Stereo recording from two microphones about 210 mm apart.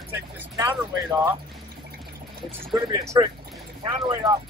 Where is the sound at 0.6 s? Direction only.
15° right (ahead or behind).